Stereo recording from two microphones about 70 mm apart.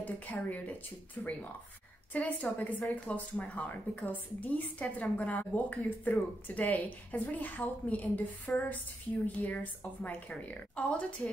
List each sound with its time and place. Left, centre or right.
0.0 s speech: left
2.1 s a woman's voice: left